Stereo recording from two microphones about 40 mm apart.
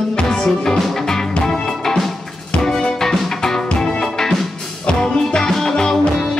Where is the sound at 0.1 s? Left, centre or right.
Centre.